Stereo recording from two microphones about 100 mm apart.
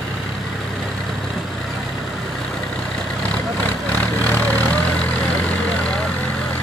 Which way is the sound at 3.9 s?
15° left (ahead or behind).